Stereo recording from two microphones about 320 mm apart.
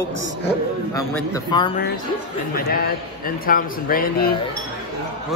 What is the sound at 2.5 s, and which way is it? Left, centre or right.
A man's voice, left.